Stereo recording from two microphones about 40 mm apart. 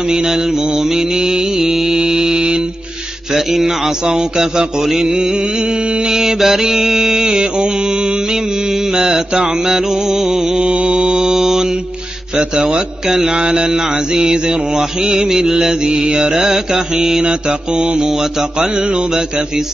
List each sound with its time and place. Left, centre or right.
0.1 s mantra: centre
3.3 s mantra: centre
12.5 s mantra: right
17.2 s mantra: right
17.9 s mantra: centre
18.6 s mantra: right